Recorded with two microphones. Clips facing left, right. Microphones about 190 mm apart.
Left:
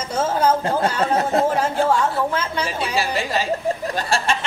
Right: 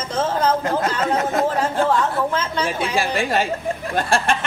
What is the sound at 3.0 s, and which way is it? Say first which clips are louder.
Chuckle: right 2 dB; 55° right (ahead or behind).